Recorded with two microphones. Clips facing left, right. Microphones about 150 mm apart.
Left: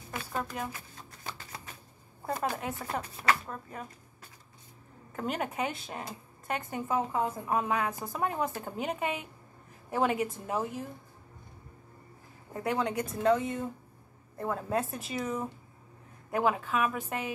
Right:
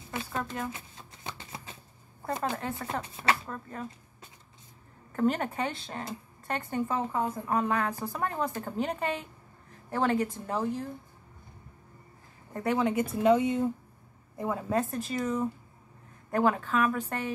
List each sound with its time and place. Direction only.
0.3 s speech: 5° left (ahead or behind)
0.7 s a sound: 20° right (ahead or behind)
2.5 s speech: 5° left (ahead or behind)
3.0 s speech: 20° right (ahead or behind)
3.4 s speech: 5° left (ahead or behind)
5.1 s speech: 5° left (ahead or behind)
12.5 s speech: centre (ahead or behind)
13.2 s speech: 15° right (ahead or behind); by 17.3 s 10° left (ahead or behind)